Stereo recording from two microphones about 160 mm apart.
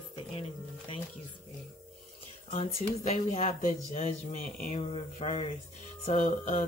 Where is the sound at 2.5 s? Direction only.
45° left (ahead or behind).